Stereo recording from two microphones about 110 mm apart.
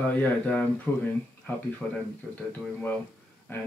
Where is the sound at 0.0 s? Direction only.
15° left (ahead or behind).